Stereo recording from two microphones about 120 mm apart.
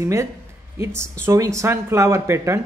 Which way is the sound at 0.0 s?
25° right (ahead or behind).